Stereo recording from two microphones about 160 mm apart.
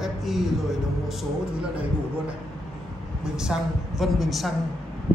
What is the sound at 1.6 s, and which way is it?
Speech, 5° right (ahead or behind).